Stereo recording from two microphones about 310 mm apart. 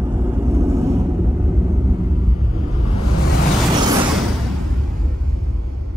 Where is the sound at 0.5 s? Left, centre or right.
Centre.